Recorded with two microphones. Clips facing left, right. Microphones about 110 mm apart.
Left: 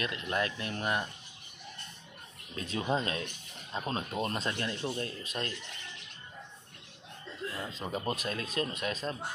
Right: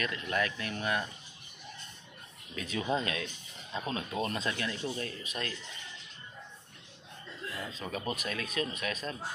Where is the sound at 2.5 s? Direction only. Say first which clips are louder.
Even; 30° left (ahead or behind).